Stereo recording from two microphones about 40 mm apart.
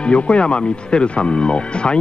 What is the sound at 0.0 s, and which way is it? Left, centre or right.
Speech, left.